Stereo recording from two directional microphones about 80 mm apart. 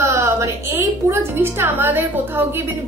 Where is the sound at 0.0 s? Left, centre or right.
Right.